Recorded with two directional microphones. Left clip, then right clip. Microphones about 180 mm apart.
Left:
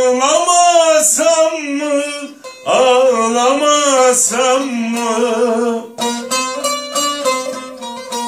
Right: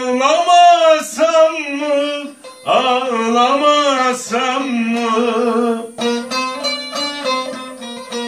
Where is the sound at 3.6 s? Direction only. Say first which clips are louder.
Left 2 dB; 10° left (ahead or behind).